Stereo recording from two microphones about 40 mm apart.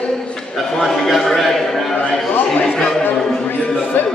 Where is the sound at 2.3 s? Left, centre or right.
Left.